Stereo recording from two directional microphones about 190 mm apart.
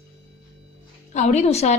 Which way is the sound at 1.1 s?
40° left (ahead or behind).